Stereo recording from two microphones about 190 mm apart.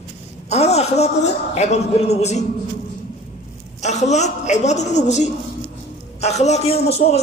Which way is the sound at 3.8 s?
35° left (ahead or behind).